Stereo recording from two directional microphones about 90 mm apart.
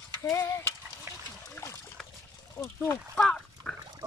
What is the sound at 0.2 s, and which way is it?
Stir, 30° left (ahead or behind).